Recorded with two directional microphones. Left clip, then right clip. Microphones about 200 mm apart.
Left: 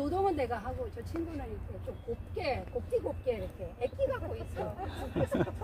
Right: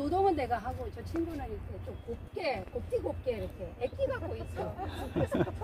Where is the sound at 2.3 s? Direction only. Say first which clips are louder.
Right 1 dB; 10° left (ahead or behind).